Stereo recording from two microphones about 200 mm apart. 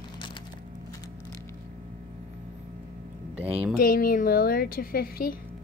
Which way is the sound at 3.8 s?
45° left (ahead or behind).